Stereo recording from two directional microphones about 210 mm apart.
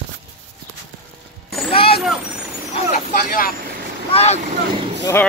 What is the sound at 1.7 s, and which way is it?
Vehicle, 25° left (ahead or behind).